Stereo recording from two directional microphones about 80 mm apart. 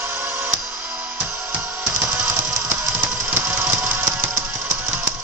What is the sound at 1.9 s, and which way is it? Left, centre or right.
Engine, right.